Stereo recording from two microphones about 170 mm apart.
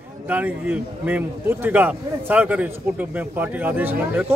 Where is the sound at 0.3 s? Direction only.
10° right (ahead or behind).